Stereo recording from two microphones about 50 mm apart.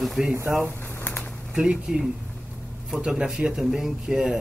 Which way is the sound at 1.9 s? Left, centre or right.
Centre.